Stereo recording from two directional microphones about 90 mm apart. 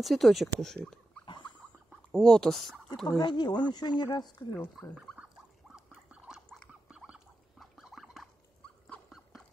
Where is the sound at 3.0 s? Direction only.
50° left (ahead or behind).